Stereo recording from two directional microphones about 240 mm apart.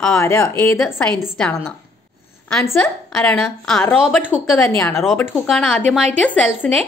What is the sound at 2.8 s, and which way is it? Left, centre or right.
A woman's voice, centre.